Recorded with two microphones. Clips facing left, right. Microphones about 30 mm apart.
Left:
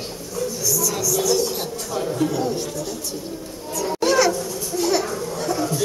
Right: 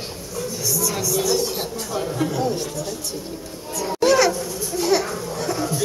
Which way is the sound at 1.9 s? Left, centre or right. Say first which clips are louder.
Left 2 dB; centre.